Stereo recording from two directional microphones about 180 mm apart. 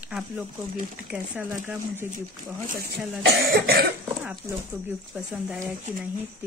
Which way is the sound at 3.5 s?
60° right (ahead or behind).